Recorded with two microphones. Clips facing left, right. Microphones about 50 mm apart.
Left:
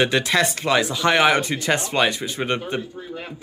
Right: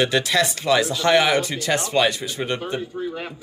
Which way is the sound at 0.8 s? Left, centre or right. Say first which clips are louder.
Left 1 dB; centre.